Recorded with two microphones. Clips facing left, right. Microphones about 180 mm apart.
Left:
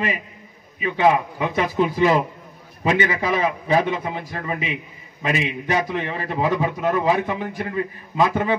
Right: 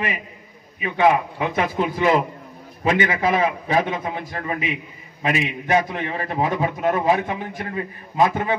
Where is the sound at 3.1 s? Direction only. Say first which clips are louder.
Right 2 dB; 55° right (ahead or behind).